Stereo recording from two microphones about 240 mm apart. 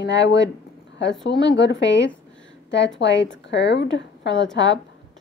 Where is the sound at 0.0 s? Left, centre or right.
Left.